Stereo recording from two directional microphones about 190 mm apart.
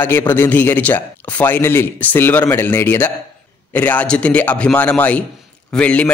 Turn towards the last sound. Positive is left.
turn(degrees=5)  # may be behind; listen again after turning